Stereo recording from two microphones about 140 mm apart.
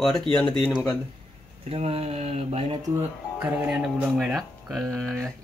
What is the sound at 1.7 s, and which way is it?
Speech, 45° right (ahead or behind).